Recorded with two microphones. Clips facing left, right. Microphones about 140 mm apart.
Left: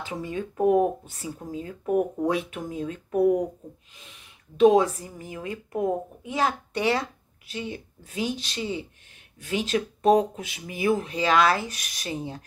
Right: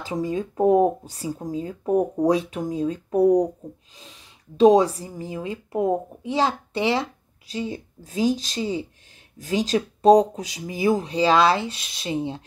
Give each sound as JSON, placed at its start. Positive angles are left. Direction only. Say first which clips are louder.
{"t": 0.0, "sound": "speech", "louder": "right 5 dB", "side_deg": -35}
{"t": 7.5, "sound": "speech", "louder": "right 4 dB", "side_deg": -35}